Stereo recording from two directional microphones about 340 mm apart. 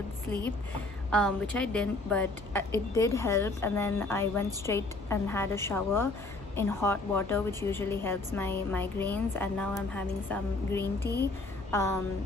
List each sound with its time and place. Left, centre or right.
1.1 s a woman's voice: centre